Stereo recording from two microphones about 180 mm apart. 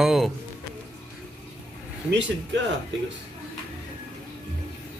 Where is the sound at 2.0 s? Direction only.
75° right (ahead or behind).